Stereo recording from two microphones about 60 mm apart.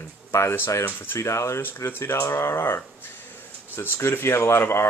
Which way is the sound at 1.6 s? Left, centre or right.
Left.